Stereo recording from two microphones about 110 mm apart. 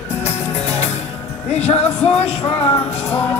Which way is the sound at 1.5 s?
75° left (ahead or behind).